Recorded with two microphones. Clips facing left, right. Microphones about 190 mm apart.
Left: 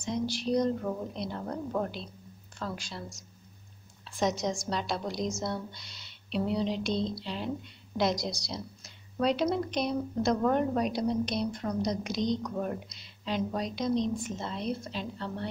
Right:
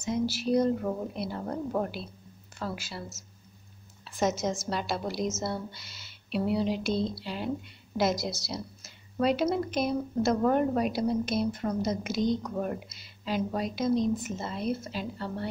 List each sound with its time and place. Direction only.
0.0 s a woman's voice: 5° right (ahead or behind)